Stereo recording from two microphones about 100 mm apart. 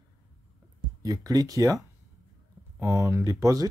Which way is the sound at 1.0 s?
35° right (ahead or behind).